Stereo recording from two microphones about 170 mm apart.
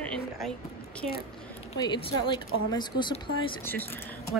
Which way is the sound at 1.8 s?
25° left (ahead or behind).